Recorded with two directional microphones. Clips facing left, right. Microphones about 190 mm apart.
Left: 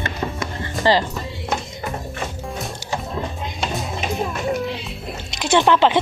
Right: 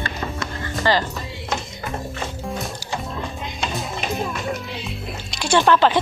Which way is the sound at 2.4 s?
Centre (ahead or behind).